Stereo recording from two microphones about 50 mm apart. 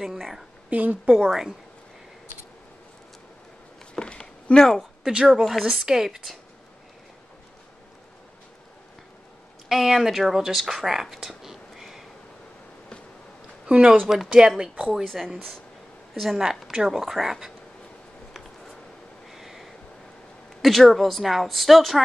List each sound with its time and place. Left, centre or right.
0.0 s speech: centre
0.7 s a woman's voice: right
1.1 s speech: centre
3.9 s a sound: centre
5.0 s speech: centre
5.5 s speech: centre
9.7 s speech: centre
13.7 s speech: right
14.0 s speech: centre
15.1 s speech: centre
19.2 s a sound: centre
20.6 s speech: centre